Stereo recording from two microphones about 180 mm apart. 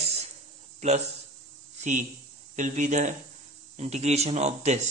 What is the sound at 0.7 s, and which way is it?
Speech, 40° right (ahead or behind).